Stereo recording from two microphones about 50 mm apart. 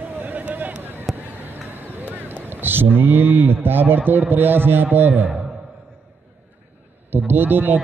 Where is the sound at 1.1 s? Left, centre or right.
Right.